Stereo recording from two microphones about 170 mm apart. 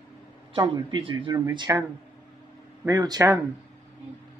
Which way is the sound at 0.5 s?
30° right (ahead or behind).